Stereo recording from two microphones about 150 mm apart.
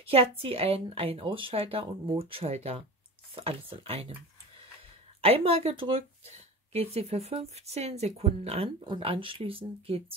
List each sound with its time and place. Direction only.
0.1 s speech: 40° right (ahead or behind)
5.2 s speech: 40° right (ahead or behind)